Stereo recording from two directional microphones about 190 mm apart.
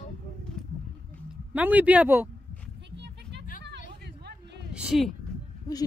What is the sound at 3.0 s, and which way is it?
Music, 65° right (ahead or behind).